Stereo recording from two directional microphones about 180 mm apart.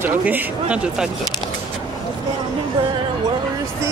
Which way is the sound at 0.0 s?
10° right (ahead or behind).